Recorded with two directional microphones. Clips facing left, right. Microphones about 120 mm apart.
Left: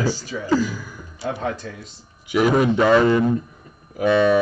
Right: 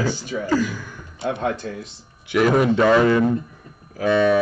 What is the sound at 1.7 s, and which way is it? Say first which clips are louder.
Speech: right 5 dB; 45° right (ahead or behind).